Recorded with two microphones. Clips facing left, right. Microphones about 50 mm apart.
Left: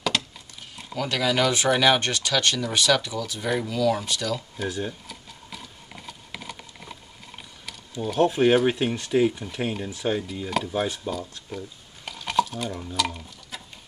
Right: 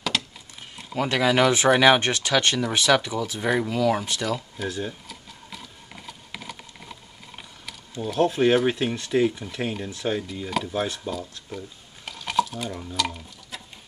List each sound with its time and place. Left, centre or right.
0.1 s a sound: centre
0.9 s speech: right
4.6 s sewing machine: centre
8.0 s speech: centre